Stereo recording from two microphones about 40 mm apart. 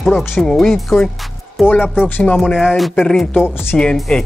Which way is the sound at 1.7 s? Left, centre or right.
Left.